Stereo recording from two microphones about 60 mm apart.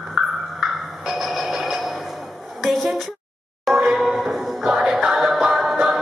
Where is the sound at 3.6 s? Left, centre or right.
Centre.